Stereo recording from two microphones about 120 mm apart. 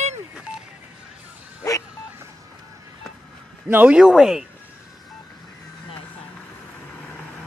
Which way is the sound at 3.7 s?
10° right (ahead or behind).